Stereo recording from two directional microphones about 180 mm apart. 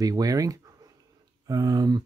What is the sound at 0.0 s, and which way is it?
Speech, 20° right (ahead or behind).